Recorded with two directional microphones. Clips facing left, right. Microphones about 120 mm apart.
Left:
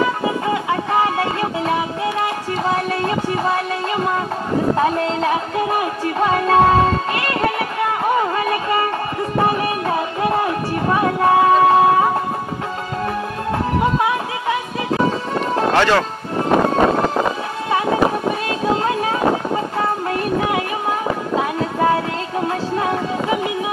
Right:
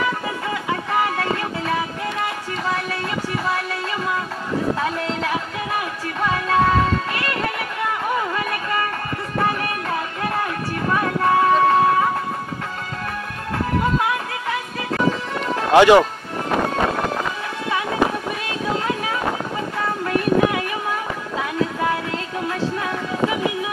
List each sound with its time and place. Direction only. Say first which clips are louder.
0.0 s music: left 5 dB; 30° left (ahead or behind)
2.6 s a sound: left 5 dB; 30° left (ahead or behind)
4.7 s music: left 6 dB; 35° left (ahead or behind)
13.9 s music: left 3 dB; 25° left (ahead or behind)
15.7 s speech: right 7 dB; 15° right (ahead or behind)
16.7 s vehicle: left 6 dB; 35° left (ahead or behind)
20.1 s a sound: right 1 dB; 30° left (ahead or behind)